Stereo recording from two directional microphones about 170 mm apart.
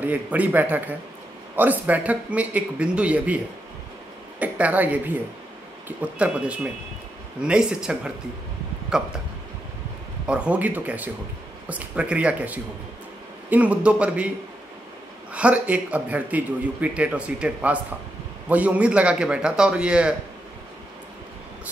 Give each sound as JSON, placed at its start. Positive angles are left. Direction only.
{"t": 0.0, "sound": "a man's voice", "side_deg": -10}
{"t": 4.4, "sound": "a man's voice", "side_deg": -10}
{"t": 10.2, "sound": "a man's voice", "side_deg": -5}
{"t": 15.3, "sound": "a man's voice", "side_deg": -5}